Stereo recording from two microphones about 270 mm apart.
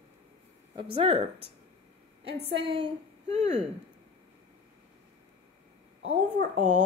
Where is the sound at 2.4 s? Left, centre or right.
Centre.